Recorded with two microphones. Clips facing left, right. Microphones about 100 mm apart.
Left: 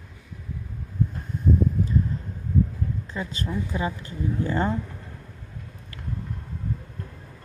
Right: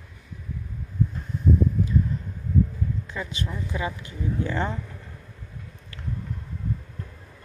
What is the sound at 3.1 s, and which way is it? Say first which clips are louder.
Speech: left 2 dB; 40° left (ahead or behind).